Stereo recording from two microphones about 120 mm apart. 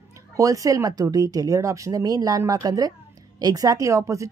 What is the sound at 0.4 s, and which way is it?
A woman's voice, 30° right (ahead or behind).